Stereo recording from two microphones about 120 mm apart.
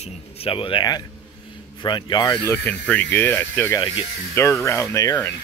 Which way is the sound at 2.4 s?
15° left (ahead or behind).